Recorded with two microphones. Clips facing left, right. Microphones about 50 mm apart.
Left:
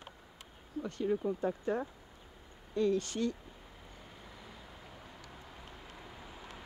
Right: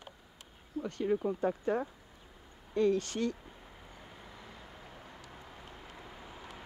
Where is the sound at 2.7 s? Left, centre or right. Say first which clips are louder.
Right 2 dB; right.